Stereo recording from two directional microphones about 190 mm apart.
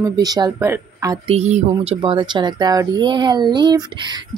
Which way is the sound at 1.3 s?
35° right (ahead or behind).